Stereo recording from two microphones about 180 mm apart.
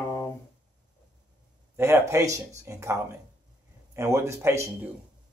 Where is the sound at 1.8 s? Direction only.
15° right (ahead or behind).